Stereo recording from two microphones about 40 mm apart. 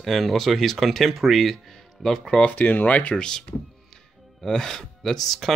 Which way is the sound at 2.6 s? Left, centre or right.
Left.